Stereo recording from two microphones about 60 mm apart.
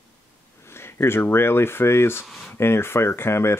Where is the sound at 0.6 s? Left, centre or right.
Left.